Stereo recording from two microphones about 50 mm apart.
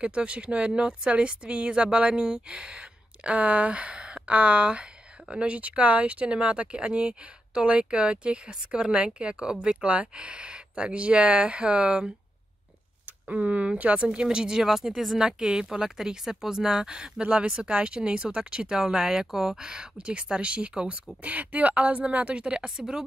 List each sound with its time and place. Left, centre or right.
0.0 s speech: right
13.3 s speech: right; by 15.1 s centre
15.1 s speech: centre